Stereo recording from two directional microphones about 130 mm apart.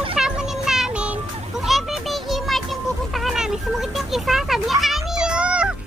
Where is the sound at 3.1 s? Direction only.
Centre (ahead or behind).